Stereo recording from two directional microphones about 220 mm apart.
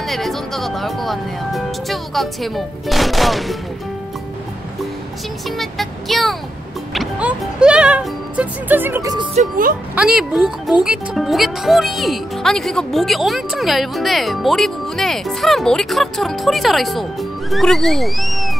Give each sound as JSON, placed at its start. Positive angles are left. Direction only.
{"t": 0.0, "sound": "speech", "side_deg": 0}
{"t": 5.6, "sound": "speech", "side_deg": 0}
{"t": 9.3, "sound": "speech", "side_deg": -35}
{"t": 9.9, "sound": "speech", "side_deg": -5}